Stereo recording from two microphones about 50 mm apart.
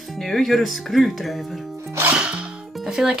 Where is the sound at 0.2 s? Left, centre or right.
Centre.